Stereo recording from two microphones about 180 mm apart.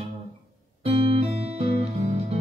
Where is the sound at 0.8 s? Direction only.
35° right (ahead or behind).